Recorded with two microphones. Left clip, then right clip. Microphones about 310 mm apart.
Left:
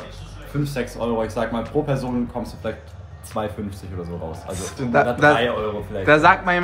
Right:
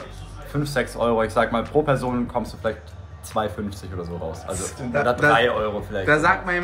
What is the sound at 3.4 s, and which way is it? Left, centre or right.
A man's voice, centre.